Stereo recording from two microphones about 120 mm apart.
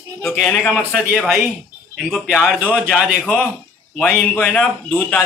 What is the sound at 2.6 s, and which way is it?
A man's voice, 10° left (ahead or behind).